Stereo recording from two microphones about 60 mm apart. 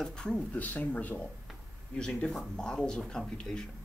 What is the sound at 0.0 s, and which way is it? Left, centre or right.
Speech, centre.